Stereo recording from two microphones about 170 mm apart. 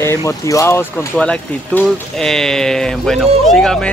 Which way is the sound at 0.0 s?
20° left (ahead or behind).